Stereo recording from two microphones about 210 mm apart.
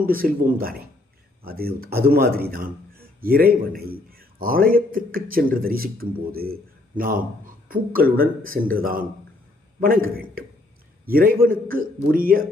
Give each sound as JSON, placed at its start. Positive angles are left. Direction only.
{"t": 0.0, "sound": "a man's voice", "side_deg": -45}
{"t": 2.5, "sound": "a sound", "side_deg": -45}
{"t": 3.7, "sound": "a man's voice", "side_deg": -45}